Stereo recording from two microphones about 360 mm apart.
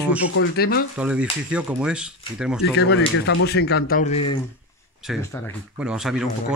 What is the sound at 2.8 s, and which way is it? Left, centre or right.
Speech, left.